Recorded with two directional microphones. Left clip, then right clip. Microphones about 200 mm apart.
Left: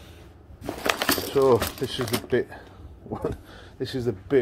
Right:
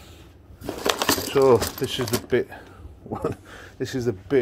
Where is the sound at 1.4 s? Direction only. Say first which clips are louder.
Right 3 dB; 25° right (ahead or behind).